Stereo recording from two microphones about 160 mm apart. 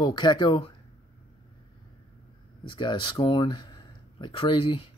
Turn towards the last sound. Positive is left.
turn(degrees=35)  # may be behind; listen again after turning